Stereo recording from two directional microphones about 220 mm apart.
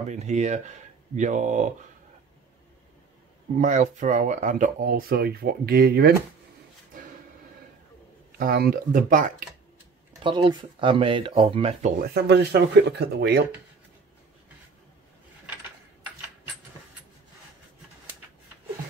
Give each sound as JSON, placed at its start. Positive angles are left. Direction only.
{"t": 0.1, "sound": "speech", "side_deg": -30}
{"t": 3.5, "sound": "speech", "side_deg": -35}
{"t": 8.3, "sound": "speech", "side_deg": -40}
{"t": 10.2, "sound": "speech", "side_deg": -20}
{"t": 12.0, "sound": "speech", "side_deg": -50}